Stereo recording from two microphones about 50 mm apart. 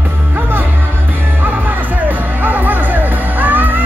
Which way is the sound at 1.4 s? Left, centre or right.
Right.